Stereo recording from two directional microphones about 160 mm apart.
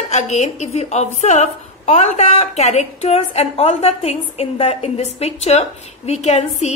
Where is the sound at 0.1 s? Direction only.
45° left (ahead or behind).